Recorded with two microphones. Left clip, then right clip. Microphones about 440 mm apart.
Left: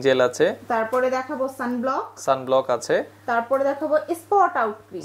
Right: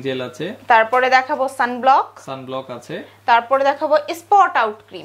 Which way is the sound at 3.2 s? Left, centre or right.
Right.